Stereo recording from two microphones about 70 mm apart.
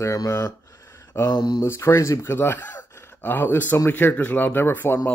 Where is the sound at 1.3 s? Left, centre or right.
Left.